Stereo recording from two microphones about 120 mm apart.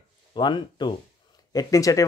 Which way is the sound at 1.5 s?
30° left (ahead or behind).